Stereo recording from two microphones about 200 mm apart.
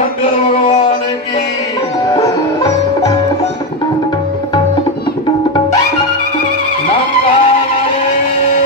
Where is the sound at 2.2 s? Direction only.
20° left (ahead or behind).